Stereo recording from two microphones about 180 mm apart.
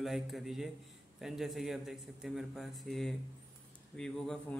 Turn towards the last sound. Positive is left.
turn(degrees=5)  # may be behind; listen again after turning